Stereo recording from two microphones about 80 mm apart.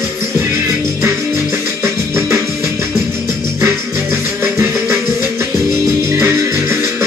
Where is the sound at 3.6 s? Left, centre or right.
Right.